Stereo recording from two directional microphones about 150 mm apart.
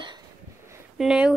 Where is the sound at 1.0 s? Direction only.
5° right (ahead or behind).